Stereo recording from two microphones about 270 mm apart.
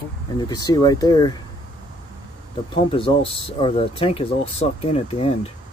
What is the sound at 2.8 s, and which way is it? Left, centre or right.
Speech, centre.